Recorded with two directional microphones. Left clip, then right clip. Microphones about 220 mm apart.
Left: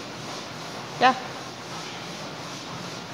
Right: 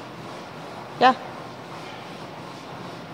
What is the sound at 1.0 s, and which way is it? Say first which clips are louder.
Speech: right 2 dB; 20° right (ahead or behind).